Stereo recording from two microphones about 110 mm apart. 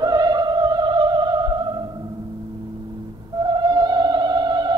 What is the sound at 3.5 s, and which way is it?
Music, 40° right (ahead or behind).